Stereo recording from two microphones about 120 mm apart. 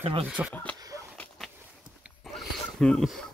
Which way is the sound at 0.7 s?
30° right (ahead or behind).